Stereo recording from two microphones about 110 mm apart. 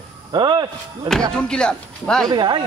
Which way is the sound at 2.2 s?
40° right (ahead or behind).